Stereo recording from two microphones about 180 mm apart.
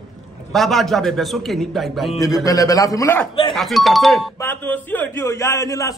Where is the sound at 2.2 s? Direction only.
20° left (ahead or behind).